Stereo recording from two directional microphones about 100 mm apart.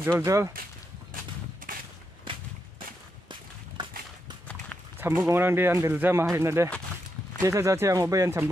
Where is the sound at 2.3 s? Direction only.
55° right (ahead or behind).